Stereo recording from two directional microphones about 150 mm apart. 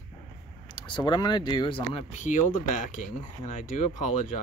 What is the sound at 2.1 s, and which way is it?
Speech, 55° left (ahead or behind).